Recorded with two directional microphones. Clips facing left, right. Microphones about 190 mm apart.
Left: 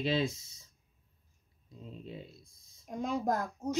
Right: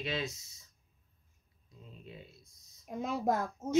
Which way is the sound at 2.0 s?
30° left (ahead or behind).